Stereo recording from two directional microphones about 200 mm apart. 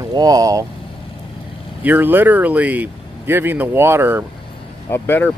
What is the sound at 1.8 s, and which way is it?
Speech, 10° right (ahead or behind).